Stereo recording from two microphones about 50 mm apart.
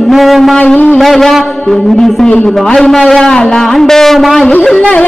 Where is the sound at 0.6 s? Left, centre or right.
Left.